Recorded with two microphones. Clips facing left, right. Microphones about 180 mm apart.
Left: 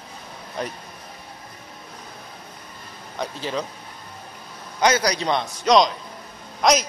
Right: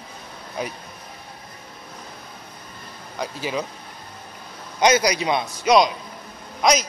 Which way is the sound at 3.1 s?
5° right (ahead or behind).